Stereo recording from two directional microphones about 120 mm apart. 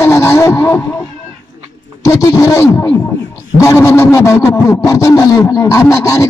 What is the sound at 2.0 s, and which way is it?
A man's voice, 25° left (ahead or behind).